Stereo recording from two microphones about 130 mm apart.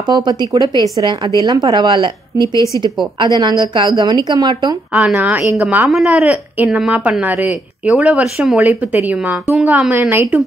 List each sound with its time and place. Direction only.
0.0 s speech: 30° right (ahead or behind)
2.4 s a woman's voice: 25° left (ahead or behind)
3.2 s speech: 35° right (ahead or behind)
4.9 s speech: 10° right (ahead or behind)
5.9 s speech: centre (ahead or behind)